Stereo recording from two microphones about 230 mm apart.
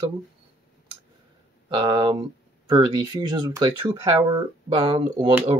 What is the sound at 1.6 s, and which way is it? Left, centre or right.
Speech, centre.